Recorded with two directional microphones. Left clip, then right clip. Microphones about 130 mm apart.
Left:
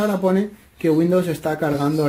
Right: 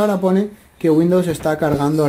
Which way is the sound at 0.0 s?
10° right (ahead or behind).